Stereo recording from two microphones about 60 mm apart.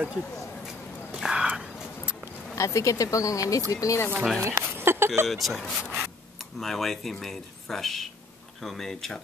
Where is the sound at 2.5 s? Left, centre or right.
Left.